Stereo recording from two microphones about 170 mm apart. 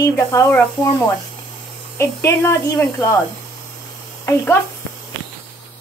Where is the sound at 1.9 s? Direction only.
15° left (ahead or behind).